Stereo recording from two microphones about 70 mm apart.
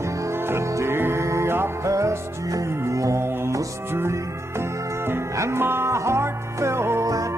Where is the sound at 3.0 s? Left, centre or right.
Right.